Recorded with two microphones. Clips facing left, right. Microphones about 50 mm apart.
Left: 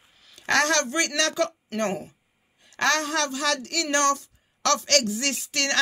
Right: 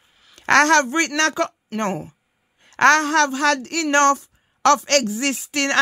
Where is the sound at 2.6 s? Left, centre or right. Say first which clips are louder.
Right 9 dB; right.